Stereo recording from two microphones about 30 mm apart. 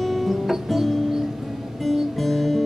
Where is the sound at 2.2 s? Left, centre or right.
Centre.